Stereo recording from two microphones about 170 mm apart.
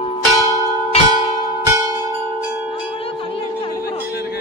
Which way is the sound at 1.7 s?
20° right (ahead or behind).